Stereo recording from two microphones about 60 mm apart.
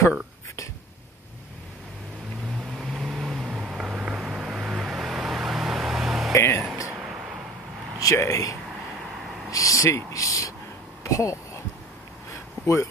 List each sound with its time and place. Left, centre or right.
2.8 s vehicle: centre
6.3 s music: left
8.0 s speech: left
9.5 s a sound: left
11.1 s speech: left
12.6 s a sound: left